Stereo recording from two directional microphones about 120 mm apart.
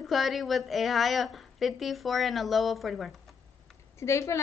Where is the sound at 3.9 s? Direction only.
25° left (ahead or behind).